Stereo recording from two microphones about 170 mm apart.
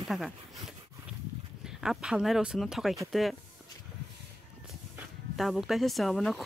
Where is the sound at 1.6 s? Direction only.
5° right (ahead or behind).